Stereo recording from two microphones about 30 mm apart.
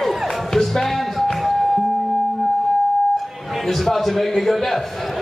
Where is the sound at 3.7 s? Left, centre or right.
Centre.